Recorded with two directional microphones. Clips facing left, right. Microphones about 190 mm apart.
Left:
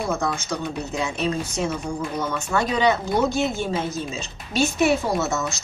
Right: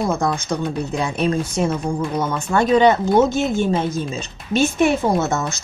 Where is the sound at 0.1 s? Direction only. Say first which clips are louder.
Right 4 dB; 50° right (ahead or behind).